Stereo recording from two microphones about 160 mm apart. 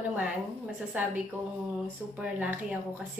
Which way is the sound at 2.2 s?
10° right (ahead or behind).